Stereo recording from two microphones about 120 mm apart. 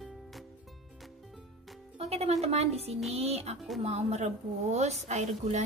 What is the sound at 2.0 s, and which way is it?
Music, 60° right (ahead or behind).